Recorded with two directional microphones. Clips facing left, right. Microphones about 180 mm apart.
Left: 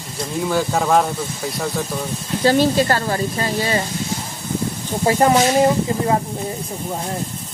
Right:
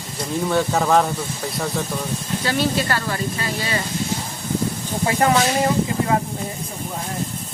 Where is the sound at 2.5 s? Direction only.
35° left (ahead or behind).